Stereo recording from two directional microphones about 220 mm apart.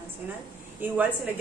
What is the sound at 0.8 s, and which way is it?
Speech, 10° right (ahead or behind).